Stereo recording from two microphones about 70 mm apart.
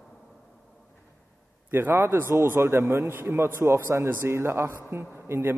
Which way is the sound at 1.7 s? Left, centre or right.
Right.